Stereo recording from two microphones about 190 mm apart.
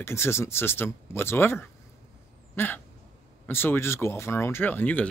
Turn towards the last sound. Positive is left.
turn(degrees=10)  # may be behind; listen again after turning